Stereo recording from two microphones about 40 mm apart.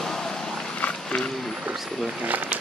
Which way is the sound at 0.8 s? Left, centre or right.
Left.